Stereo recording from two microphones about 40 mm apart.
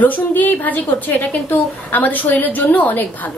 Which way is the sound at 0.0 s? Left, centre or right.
Left.